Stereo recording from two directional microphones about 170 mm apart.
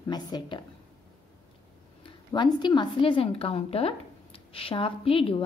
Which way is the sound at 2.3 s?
25° left (ahead or behind).